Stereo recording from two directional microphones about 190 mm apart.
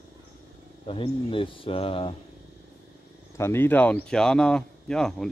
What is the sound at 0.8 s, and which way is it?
Speech, 25° left (ahead or behind).